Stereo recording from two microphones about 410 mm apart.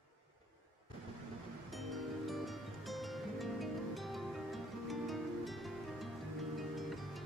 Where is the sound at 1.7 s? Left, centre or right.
Centre.